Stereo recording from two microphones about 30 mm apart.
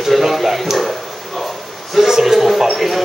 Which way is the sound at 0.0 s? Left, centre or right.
Centre.